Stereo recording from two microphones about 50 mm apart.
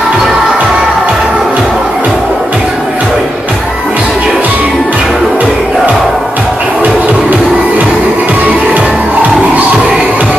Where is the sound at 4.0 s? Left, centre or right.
Right.